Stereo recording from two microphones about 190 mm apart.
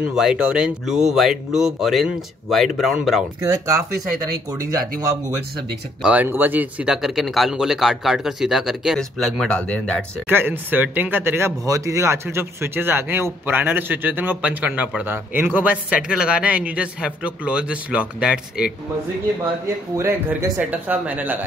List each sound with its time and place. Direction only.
0.0 s speech: 5° right (ahead or behind)
3.3 s speech: 20° right (ahead or behind)
6.0 s speech: 10° right (ahead or behind)
10.2 s speech: 10° right (ahead or behind)
20.0 s speech: 15° right (ahead or behind)